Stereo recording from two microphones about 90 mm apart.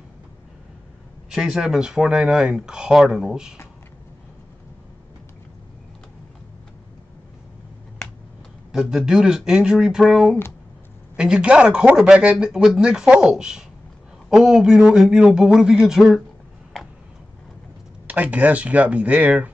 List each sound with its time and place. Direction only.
1.3 s speech: 10° right (ahead or behind)
8.7 s speech: 5° right (ahead or behind)
18.0 s speech: 20° right (ahead or behind)